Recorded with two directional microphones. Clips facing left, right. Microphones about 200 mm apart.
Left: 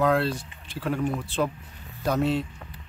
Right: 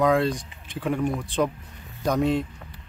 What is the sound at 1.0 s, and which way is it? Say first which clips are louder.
Speech: right 2 dB; 15° right (ahead or behind).